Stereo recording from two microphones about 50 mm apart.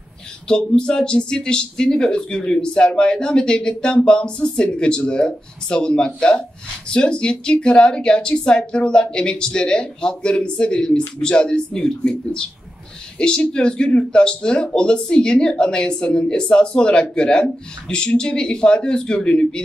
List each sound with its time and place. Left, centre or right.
0.5 s speech: centre